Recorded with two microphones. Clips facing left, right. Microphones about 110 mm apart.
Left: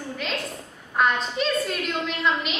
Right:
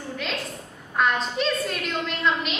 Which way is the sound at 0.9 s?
Centre (ahead or behind).